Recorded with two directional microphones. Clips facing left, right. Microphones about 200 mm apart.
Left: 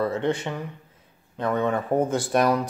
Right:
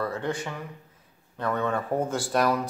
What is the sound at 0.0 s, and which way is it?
Speech, 25° left (ahead or behind).